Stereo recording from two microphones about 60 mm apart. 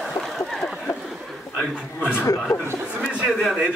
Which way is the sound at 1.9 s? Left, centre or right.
Left.